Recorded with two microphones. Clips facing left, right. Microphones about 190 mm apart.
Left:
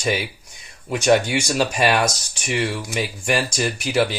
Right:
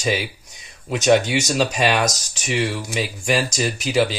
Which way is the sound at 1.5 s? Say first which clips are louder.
Left 1 dB; 5° left (ahead or behind).